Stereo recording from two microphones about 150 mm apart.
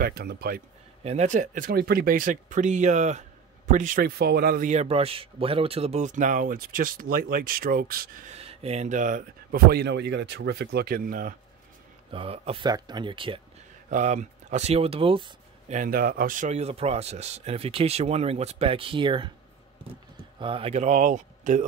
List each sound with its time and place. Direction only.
0.0 s speech: 90° right
1.0 s speech: 50° right (ahead or behind)
3.7 s speech: 60° right (ahead or behind); by 4.6 s 85° right
4.6 s speech: 45° right (ahead or behind); by 8.2 s 80° right
8.3 s speech: 45° right (ahead or behind); by 11.3 s 70° right (ahead or behind)
12.1 s speech: 40° right (ahead or behind)
12.6 s speech: 30° right (ahead or behind)
13.8 s speech: 55° right (ahead or behind); by 15.3 s 35° right (ahead or behind)
15.7 s speech: 70° right (ahead or behind); by 19.3 s 35° right (ahead or behind)
20.3 s speech: 35° right (ahead or behind); by 21.6 s 55° right (ahead or behind)